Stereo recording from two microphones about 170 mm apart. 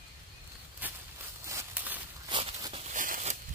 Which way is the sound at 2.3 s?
35° right (ahead or behind).